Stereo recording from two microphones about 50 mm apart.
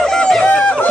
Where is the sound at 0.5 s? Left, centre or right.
Left.